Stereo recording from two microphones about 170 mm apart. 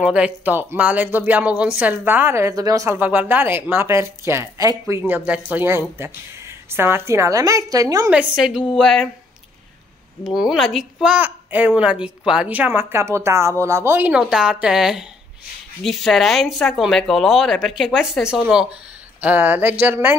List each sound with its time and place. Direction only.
0.0 s speech: 5° right (ahead or behind)
8.4 s speech: 5° right (ahead or behind)
10.2 s speech: 5° right (ahead or behind)